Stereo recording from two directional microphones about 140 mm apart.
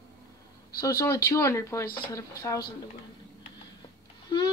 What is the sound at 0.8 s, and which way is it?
Speech, 20° left (ahead or behind).